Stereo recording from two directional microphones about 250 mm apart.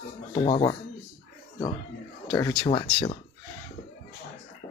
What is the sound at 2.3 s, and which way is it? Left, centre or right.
Speech, centre.